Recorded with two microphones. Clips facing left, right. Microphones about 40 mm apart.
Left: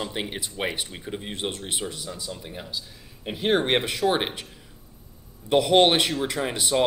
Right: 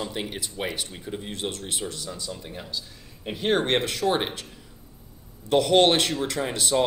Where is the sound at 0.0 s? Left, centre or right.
Centre.